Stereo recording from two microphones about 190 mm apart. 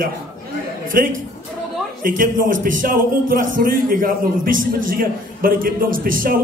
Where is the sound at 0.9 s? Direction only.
50° right (ahead or behind).